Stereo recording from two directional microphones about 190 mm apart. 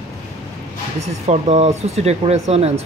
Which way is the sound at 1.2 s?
35° right (ahead or behind).